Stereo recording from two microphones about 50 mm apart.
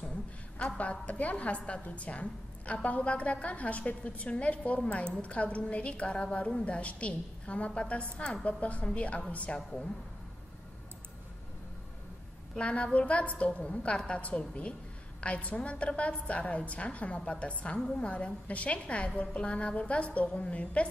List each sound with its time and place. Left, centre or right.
0.6 s a woman's voice: left
12.5 s a woman's voice: left
17.7 s a woman's voice: centre
18.0 s a woman's voice: left